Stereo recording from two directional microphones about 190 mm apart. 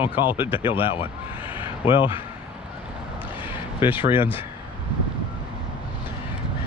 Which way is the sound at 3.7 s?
25° left (ahead or behind).